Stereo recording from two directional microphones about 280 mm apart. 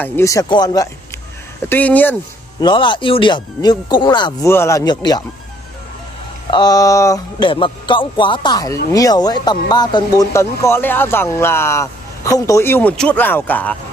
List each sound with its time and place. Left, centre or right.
0.0 s speech: centre
2.6 s speech: centre
6.5 s speech: centre